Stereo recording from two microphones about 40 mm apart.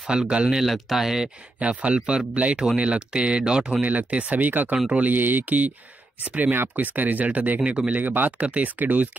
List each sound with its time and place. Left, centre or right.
0.1 s speech: right
0.6 s speech: centre
1.6 s speech: right
3.8 s speech: right
6.8 s speech: right
7.6 s speech: right
7.9 s speech: right